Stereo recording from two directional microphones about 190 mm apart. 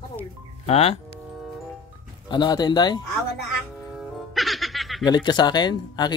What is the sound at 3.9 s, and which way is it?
Music, centre (ahead or behind).